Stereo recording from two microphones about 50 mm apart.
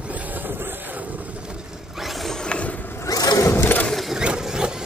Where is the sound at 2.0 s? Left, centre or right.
Centre.